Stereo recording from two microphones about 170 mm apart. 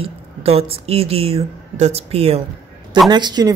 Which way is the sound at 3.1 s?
25° right (ahead or behind).